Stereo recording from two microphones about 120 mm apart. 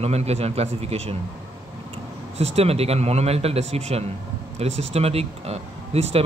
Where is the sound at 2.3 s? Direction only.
60° right (ahead or behind).